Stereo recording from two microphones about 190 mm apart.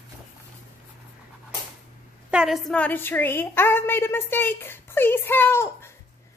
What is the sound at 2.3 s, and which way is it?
A woman's voice, centre (ahead or behind).